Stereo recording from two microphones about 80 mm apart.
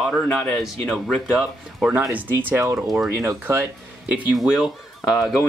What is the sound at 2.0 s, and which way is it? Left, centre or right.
Speech, right.